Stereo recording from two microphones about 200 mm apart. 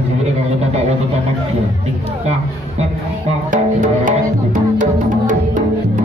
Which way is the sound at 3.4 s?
40° right (ahead or behind).